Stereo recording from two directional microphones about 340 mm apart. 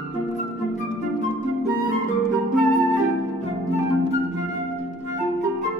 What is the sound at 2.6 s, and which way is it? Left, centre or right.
Music, left.